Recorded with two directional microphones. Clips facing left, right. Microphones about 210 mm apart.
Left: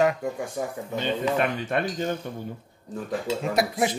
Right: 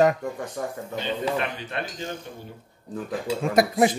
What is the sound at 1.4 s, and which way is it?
Speech, 50° left (ahead or behind).